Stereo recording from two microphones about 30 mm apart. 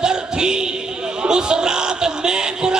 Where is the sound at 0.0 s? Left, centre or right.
Right.